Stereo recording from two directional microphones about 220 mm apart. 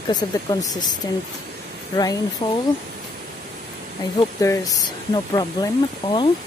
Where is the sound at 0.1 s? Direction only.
20° left (ahead or behind).